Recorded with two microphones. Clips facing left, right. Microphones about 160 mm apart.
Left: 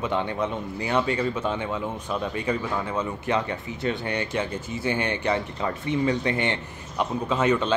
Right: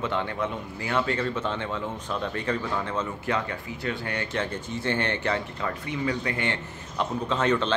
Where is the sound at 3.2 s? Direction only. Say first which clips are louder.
Left 3 dB; 20° left (ahead or behind).